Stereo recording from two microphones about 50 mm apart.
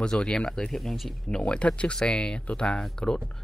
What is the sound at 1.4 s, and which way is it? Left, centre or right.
Speech, left.